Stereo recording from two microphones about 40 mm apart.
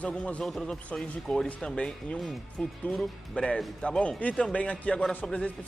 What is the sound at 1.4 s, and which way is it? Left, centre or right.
Speech, centre.